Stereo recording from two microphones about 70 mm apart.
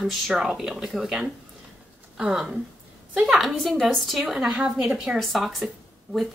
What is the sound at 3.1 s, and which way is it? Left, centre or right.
Speech, centre.